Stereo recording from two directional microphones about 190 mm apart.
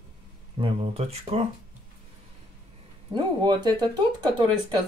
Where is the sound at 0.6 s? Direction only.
30° right (ahead or behind).